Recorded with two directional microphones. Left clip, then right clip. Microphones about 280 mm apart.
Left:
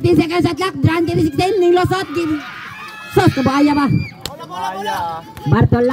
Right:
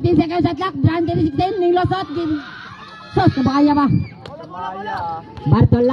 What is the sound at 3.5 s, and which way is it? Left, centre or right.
Speech, centre.